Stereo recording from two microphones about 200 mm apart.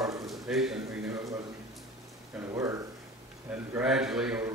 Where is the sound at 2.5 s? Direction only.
15° right (ahead or behind).